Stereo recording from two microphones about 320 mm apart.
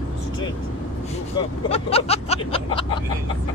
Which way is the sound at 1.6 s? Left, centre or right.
Centre.